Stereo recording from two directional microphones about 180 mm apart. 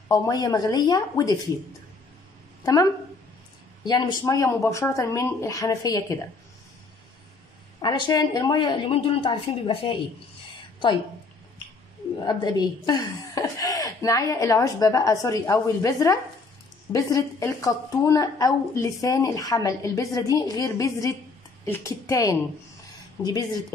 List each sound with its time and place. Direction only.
0.1 s a woman's voice: 20° left (ahead or behind)
2.6 s speech: 20° left (ahead or behind)
7.8 s a woman's voice: 25° left (ahead or behind)
12.3 s a woman's voice: 25° left (ahead or behind)